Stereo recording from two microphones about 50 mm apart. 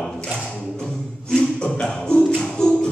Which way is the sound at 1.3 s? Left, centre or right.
Centre.